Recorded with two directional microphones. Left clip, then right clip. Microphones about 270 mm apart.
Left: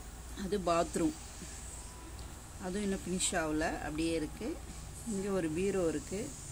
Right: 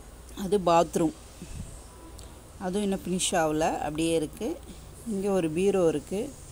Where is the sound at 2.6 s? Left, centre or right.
Centre.